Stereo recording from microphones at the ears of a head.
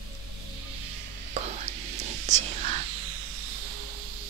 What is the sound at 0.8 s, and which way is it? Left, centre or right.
Whispering, right.